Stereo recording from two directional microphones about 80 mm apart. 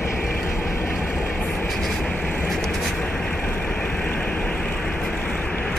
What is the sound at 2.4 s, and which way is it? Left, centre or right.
Vehicle, centre.